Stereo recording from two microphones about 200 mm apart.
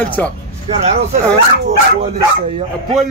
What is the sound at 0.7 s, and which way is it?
Speech, 30° right (ahead or behind).